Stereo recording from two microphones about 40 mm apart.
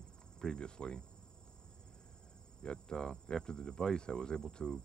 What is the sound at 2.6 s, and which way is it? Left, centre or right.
Cricket, left.